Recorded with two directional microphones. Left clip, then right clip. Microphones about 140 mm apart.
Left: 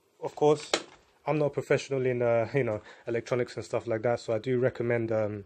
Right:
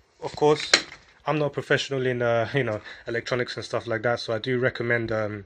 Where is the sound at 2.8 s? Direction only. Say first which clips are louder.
Right 3 dB; 45° left (ahead or behind).